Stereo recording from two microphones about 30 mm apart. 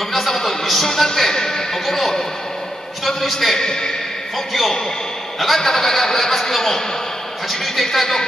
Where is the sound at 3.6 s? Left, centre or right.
Left.